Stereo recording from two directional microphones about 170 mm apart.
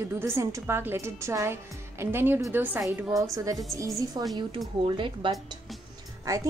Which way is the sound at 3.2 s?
20° right (ahead or behind).